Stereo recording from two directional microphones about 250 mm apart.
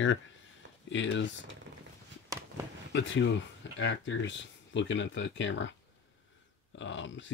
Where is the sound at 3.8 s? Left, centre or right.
Left.